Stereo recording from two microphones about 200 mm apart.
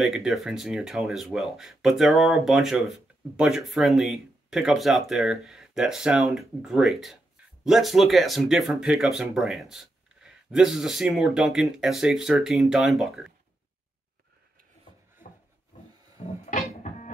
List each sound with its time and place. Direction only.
0.0 s speech: centre (ahead or behind)
16.2 s music: 35° left (ahead or behind)